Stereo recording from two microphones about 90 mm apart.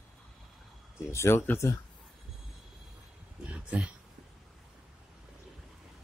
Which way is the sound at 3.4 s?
15° right (ahead or behind).